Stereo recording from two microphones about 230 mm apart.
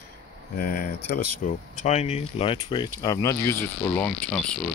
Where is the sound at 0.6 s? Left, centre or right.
Left.